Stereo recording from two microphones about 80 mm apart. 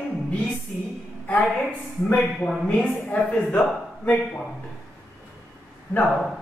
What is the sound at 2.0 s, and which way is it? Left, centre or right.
Speech, centre.